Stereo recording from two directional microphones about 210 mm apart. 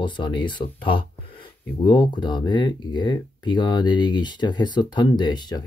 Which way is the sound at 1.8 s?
20° left (ahead or behind).